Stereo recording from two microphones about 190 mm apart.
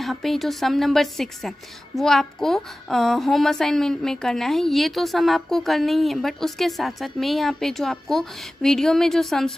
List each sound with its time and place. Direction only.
0.0 s a woman's voice: centre (ahead or behind)